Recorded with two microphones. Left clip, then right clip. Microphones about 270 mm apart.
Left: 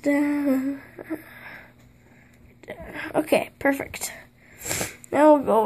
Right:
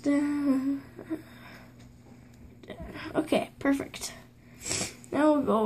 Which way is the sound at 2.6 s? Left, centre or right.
Left.